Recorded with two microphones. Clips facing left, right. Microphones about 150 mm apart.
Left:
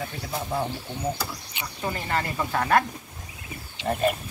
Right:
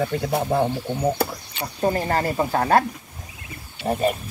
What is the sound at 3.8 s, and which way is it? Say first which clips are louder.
Speech: right 3 dB; 20° right (ahead or behind).